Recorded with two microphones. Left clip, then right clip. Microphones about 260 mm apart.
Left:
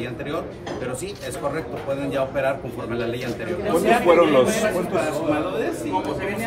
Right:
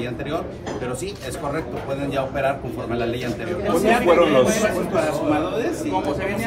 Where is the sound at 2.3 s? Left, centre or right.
Centre.